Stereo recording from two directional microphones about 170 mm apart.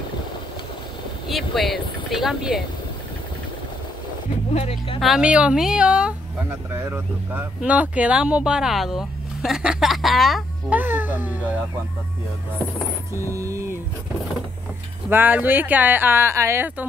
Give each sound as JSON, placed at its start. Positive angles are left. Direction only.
{"t": 1.3, "sound": "speech", "side_deg": 0}
{"t": 4.5, "sound": "speech", "side_deg": 35}
{"t": 5.0, "sound": "speech", "side_deg": -5}
{"t": 10.8, "sound": "speech", "side_deg": -10}
{"t": 13.1, "sound": "speech", "side_deg": -15}
{"t": 15.0, "sound": "speech", "side_deg": -10}